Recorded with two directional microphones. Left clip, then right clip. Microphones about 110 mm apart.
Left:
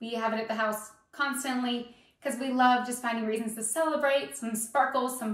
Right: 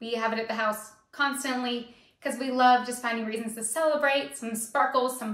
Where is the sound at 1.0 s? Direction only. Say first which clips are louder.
Right 3 dB; 30° right (ahead or behind).